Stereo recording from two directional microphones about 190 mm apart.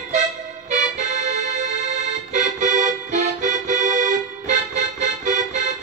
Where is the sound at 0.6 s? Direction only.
40° right (ahead or behind).